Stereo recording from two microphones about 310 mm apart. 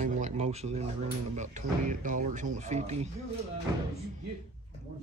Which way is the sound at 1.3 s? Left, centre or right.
Right.